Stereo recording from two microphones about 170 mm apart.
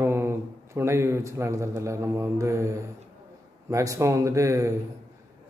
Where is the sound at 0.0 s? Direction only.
15° right (ahead or behind).